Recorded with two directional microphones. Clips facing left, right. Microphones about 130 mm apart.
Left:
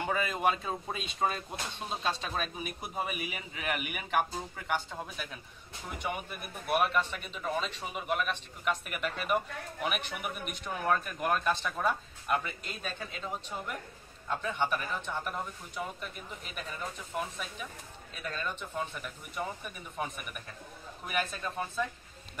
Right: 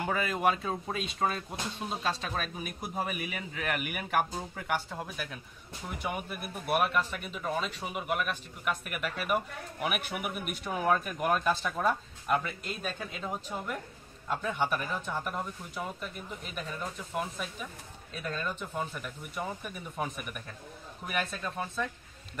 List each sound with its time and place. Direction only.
0.0 s speech: centre (ahead or behind)